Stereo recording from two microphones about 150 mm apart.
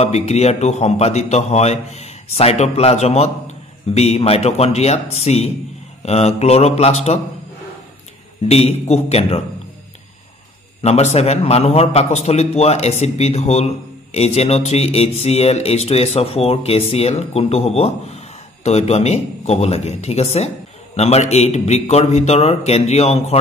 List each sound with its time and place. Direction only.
0.0 s speech: 50° left (ahead or behind)
8.5 s speech: 45° left (ahead or behind)
10.8 s speech: 45° left (ahead or behind)